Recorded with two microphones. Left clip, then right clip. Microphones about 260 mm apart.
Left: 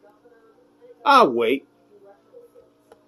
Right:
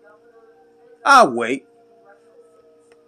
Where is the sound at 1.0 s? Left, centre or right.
Right.